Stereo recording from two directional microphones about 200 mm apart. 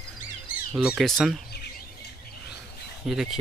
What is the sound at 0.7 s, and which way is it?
Speech, 5° right (ahead or behind).